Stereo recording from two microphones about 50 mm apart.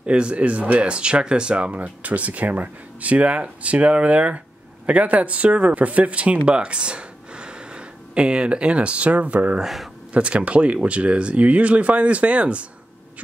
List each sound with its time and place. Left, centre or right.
0.0 s speech: right
9.6 s speech: centre
10.1 s speech: right